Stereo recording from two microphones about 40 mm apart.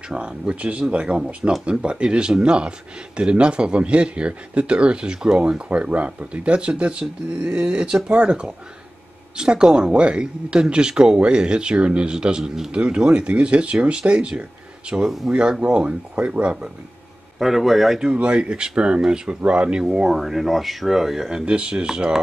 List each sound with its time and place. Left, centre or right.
0.1 s speech: right
5.7 s speech: right
17.4 s speech: centre
18.1 s speech: right
19.8 s speech: centre
20.2 s speech: centre
21.3 s speech: right